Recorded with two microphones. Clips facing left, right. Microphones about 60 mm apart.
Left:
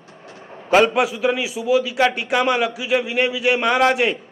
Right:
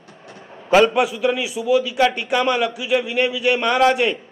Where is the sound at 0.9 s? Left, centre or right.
Left.